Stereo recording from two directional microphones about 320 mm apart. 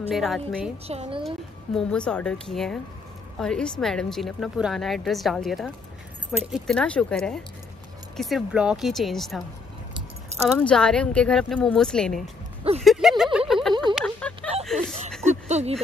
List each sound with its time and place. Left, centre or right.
0.1 s a woman's voice: centre
0.8 s speech: centre
1.2 s a woman's voice: centre
10.6 s a woman's voice: centre
12.8 s a sound: centre
14.7 s speech: centre
15.2 s a sound: right